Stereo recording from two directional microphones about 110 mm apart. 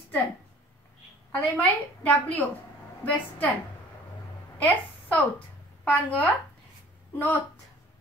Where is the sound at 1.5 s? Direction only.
15° left (ahead or behind).